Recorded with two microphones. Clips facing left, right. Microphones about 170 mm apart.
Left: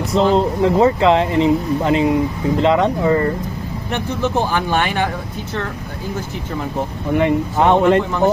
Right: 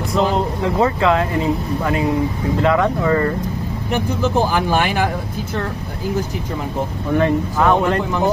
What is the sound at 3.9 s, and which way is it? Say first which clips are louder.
Speech: right 1 dB; 5° right (ahead or behind).